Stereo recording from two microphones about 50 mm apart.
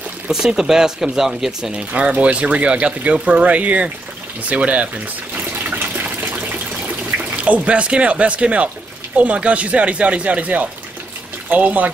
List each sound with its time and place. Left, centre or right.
0.3 s speech: centre
1.8 s speech: right
5.3 s water: right
7.1 s a sound: right
7.4 s speech: right